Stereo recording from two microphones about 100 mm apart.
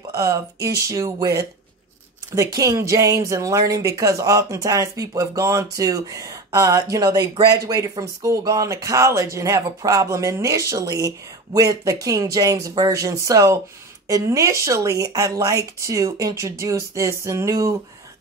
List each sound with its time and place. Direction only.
0.1 s speech: 30° right (ahead or behind)